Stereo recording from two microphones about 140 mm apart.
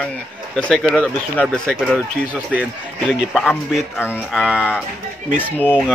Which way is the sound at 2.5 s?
10° right (ahead or behind).